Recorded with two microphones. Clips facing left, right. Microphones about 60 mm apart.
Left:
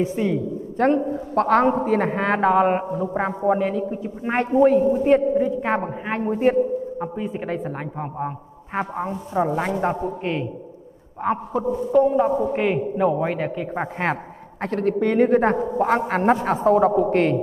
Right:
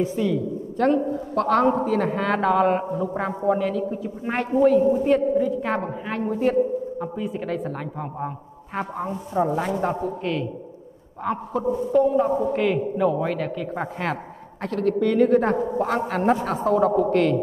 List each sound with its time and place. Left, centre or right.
0.0 s a woman's voice: left
2.9 s a man's voice: centre
3.2 s a man's voice: left
11.6 s speech: centre
12.0 s a man's voice: left
12.3 s a man's voice: centre
12.5 s a man's voice: left